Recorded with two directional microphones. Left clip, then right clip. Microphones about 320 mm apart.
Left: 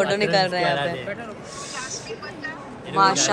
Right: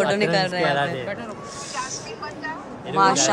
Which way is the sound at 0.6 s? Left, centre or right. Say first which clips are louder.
Right 1 dB; right.